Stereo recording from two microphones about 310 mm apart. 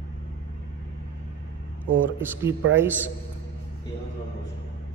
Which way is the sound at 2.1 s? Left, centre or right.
Centre.